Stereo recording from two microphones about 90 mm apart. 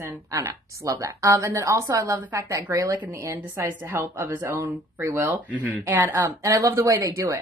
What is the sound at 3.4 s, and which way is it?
A woman's voice, 20° right (ahead or behind).